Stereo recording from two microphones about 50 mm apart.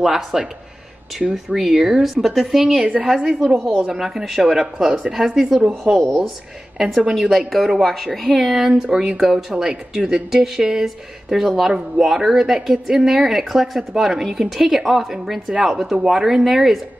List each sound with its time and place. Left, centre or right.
0.0 s speech: centre
4.4 s speech: centre
5.0 s speech: centre
7.3 s speech: centre